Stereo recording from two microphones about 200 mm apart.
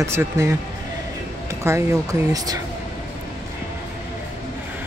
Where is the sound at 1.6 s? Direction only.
15° right (ahead or behind).